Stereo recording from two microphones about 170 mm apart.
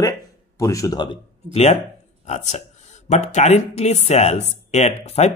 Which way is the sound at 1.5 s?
35° left (ahead or behind).